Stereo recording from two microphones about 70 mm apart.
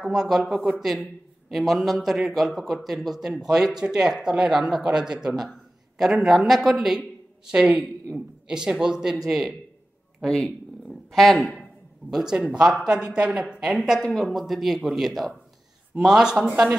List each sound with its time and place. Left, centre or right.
0.0 s a man's voice: centre
7.5 s a woman's voice: centre
10.9 s purr: centre
12.1 s a man's voice: centre